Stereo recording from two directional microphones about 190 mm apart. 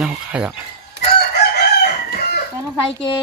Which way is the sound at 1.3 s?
55° left (ahead or behind).